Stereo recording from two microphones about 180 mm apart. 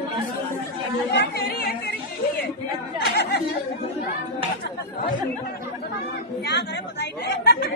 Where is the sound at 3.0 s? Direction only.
65° left (ahead or behind).